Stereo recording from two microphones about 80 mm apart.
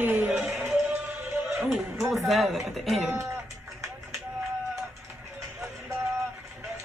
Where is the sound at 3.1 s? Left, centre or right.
Right.